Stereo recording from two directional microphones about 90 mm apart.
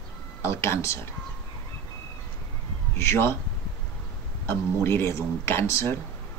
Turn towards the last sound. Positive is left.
turn(degrees=30)  # may be behind; listen again after turning